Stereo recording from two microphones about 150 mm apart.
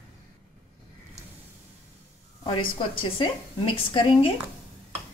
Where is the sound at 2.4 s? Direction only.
35° left (ahead or behind).